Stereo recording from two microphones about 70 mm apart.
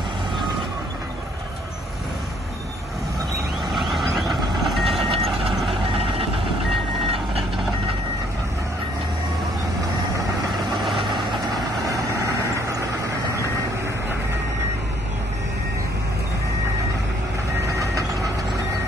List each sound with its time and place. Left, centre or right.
3.7 s vehicle: centre
11.9 s vehicle: right